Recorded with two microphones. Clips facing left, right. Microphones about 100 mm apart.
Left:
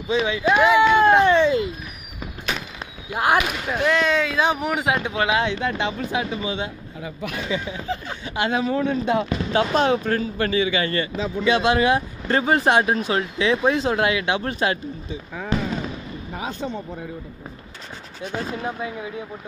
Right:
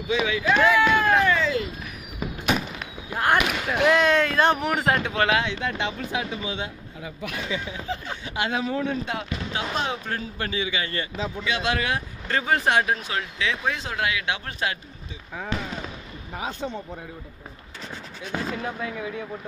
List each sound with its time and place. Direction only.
0.1 s speech: 30° left (ahead or behind)
3.2 s speech: 5° left (ahead or behind)
5.4 s speech: 30° left (ahead or behind)
9.5 s speech: 55° left (ahead or behind)
11.4 s speech: 30° left (ahead or behind)
18.6 s speech: 20° left (ahead or behind)